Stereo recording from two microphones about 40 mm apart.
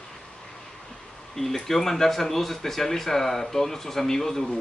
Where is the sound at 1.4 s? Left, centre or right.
Centre.